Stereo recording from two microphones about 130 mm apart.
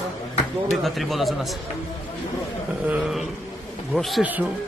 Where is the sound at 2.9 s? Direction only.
5° right (ahead or behind).